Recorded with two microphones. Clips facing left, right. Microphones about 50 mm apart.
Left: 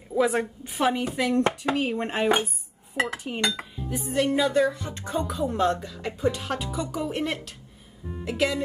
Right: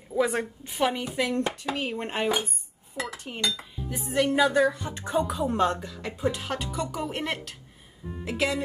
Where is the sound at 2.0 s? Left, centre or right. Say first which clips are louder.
Left 2 dB; centre.